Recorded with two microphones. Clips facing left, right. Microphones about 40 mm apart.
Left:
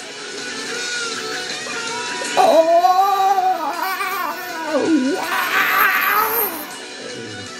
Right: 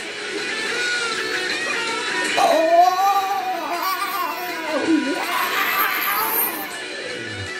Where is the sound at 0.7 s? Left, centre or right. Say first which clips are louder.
Right 2 dB; right.